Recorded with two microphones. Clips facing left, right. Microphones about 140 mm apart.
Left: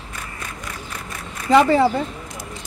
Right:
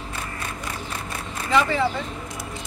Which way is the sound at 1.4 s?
40° left (ahead or behind).